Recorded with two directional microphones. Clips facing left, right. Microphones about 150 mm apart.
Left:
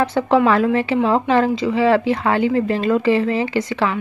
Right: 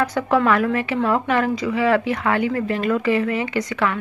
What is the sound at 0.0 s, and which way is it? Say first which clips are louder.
Speech: left 3 dB; 25° left (ahead or behind).